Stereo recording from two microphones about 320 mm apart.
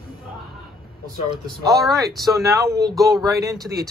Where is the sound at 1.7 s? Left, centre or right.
Centre.